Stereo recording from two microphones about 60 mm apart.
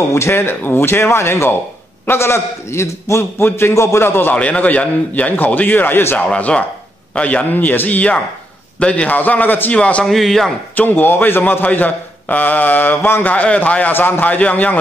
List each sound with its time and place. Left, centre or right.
0.1 s a man's voice: left
4.4 s speech: left
6.1 s speech: left
10.0 s a man's voice: centre
10.8 s a man's voice: left
13.9 s speech: left